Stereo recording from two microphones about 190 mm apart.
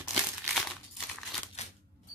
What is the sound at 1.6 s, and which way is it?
Typewriter, 35° left (ahead or behind).